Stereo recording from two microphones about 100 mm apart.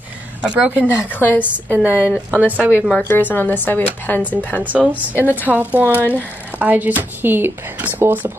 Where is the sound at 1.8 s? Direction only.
15° right (ahead or behind).